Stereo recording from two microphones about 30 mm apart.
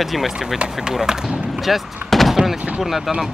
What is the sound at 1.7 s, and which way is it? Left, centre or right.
Speech, centre.